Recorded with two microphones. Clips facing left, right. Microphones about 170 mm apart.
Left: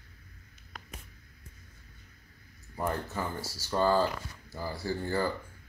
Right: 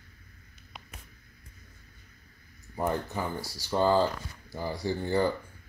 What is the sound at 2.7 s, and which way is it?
Speech, 15° right (ahead or behind).